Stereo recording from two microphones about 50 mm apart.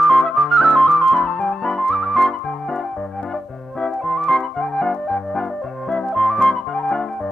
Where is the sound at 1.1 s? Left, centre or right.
Centre.